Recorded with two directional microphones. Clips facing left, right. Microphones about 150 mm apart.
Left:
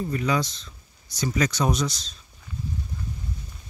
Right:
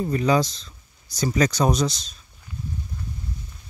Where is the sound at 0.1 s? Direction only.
35° right (ahead or behind).